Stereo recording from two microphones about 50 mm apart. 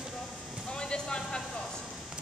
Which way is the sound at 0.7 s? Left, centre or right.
Centre.